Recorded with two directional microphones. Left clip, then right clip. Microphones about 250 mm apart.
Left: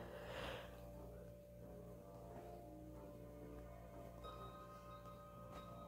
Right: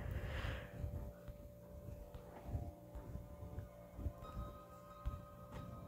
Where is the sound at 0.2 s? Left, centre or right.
Centre.